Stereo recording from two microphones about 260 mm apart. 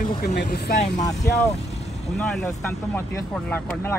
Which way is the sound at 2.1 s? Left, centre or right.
Centre.